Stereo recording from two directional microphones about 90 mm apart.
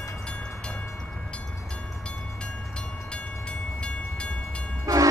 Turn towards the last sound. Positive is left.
turn(degrees=-40)  # may be behind; listen again after turning